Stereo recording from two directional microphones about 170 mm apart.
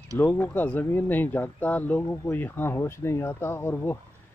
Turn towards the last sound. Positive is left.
turn(degrees=15)  # may be behind; listen again after turning